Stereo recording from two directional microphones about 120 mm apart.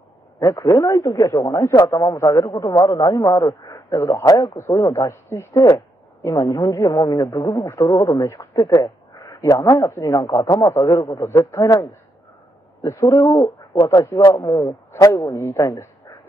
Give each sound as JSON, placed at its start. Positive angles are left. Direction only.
{"t": 0.4, "sound": "a man's voice", "side_deg": 25}